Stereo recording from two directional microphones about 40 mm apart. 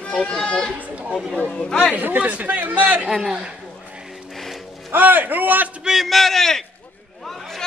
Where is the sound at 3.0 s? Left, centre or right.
Centre.